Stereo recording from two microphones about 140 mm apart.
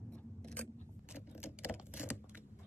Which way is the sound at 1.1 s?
10° right (ahead or behind).